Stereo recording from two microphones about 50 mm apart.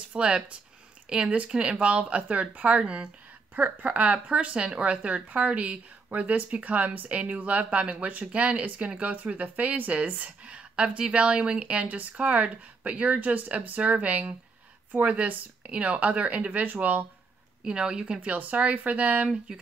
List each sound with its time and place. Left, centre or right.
0.1 s speech: centre
17.6 s a woman's voice: centre